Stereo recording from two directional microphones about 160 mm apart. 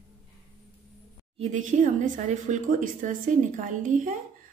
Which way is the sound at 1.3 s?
45° right (ahead or behind).